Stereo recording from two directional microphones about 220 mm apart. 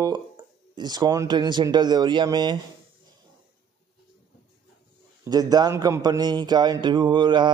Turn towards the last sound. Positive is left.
turn(degrees=-20)  # may be behind; listen again after turning